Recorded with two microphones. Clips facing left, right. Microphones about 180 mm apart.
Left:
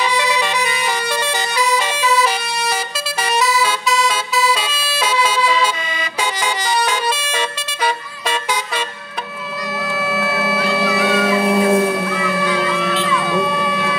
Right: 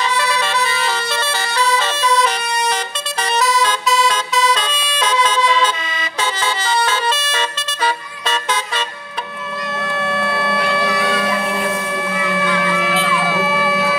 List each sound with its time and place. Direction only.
0.2 s vehicle: 15° left (ahead or behind)
3.3 s emergency vehicle: 10° left (ahead or behind)
6.4 s vehicle: 15° left (ahead or behind)
9.9 s wind instrument: 5° left (ahead or behind)
12.6 s a sound: centre (ahead or behind)